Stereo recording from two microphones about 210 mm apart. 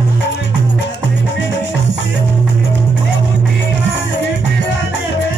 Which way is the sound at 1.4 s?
60° left (ahead or behind).